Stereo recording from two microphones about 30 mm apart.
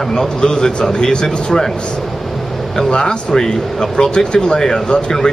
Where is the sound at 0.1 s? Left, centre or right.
Left.